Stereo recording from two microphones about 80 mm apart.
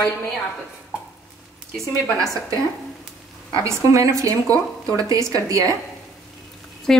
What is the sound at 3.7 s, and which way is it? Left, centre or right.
Speech, right.